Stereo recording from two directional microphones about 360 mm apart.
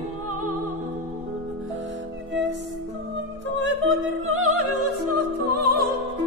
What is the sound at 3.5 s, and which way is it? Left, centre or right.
Music, right.